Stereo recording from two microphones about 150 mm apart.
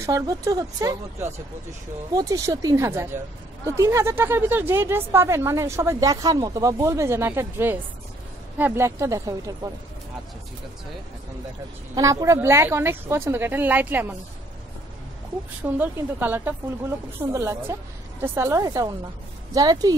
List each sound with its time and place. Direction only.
0.0 s speech: 25° right (ahead or behind)
2.1 s speech: 20° right (ahead or behind)
11.9 s speech: 20° right (ahead or behind)
15.6 s speech: 10° right (ahead or behind)